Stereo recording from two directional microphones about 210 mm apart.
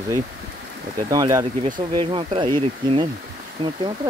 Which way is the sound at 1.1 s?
20° right (ahead or behind).